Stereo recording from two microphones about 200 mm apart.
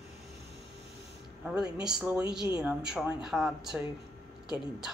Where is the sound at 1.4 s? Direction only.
5° right (ahead or behind).